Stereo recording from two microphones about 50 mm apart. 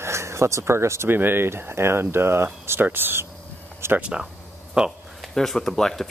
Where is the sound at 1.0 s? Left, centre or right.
Right.